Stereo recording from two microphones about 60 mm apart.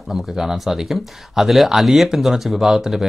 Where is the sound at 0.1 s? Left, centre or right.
Centre.